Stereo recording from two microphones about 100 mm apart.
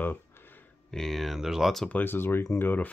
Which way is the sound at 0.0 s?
20° left (ahead or behind).